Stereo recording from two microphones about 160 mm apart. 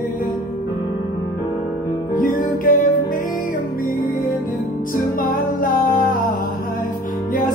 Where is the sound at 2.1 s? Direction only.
60° left (ahead or behind).